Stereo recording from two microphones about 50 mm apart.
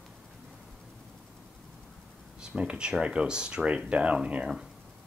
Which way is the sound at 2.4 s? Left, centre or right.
Right.